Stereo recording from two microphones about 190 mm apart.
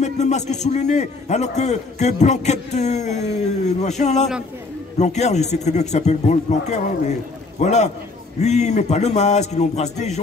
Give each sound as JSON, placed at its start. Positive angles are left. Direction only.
{"t": 0.0, "sound": "a man's voice", "side_deg": 35}